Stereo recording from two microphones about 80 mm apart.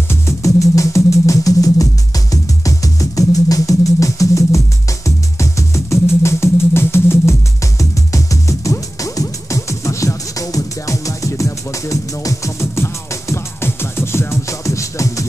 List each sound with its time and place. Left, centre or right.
0.1 s music: left